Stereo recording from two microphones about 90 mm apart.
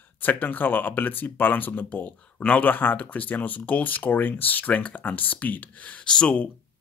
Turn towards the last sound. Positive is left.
turn(degrees=10)  # may be behind; listen again after turning